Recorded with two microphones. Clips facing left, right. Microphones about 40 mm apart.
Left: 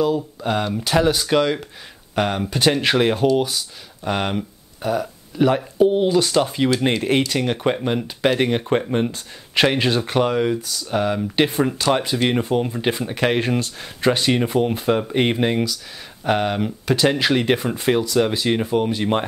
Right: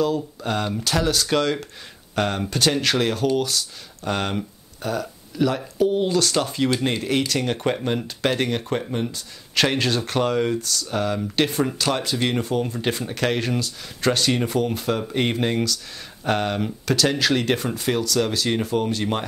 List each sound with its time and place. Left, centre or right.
0.0 s speech: centre
5.3 s speech: left
6.8 s speech: left
7.4 s speech: centre
16.9 s speech: left